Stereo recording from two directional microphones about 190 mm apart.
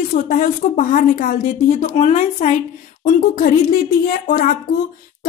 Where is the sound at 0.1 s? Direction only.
45° left (ahead or behind).